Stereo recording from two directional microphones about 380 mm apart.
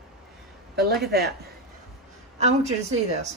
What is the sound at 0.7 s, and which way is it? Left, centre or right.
Speech, right.